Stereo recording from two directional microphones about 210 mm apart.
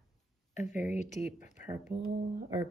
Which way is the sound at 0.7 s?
35° left (ahead or behind).